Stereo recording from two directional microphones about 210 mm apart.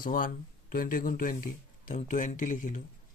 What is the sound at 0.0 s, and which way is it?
Speech, 40° left (ahead or behind).